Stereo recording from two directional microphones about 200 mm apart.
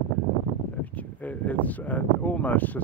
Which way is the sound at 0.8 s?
5° left (ahead or behind).